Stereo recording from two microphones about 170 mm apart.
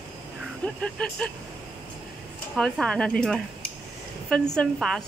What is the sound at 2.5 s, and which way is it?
Speech, 5° left (ahead or behind).